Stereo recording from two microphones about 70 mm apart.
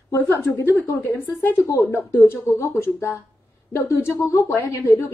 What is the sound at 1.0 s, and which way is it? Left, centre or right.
Speech, left.